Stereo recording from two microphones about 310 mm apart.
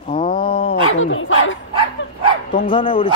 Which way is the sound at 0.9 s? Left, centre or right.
Left.